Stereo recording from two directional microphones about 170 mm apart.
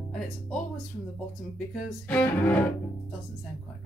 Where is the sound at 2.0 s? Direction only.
10° left (ahead or behind).